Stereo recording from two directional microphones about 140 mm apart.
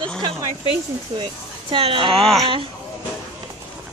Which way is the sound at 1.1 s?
35° right (ahead or behind).